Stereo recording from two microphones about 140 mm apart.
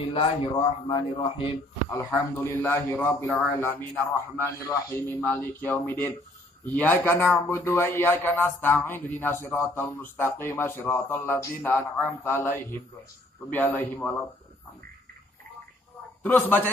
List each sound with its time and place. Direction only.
0.0 s speech: 40° left (ahead or behind)
1.9 s a man's voice: 20° left (ahead or behind)
16.2 s a man's voice: 15° left (ahead or behind)